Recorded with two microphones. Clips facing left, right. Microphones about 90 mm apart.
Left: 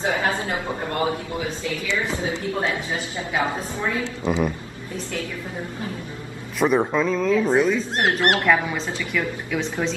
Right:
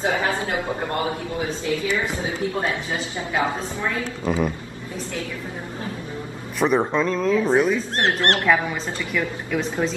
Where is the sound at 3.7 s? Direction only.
20° left (ahead or behind).